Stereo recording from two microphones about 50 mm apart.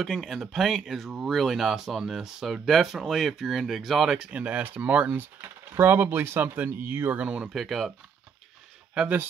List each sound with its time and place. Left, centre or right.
0.0 s speech: centre
4.2 s speech: right
5.8 s speech: right
7.2 s speech: centre
7.4 s speech: centre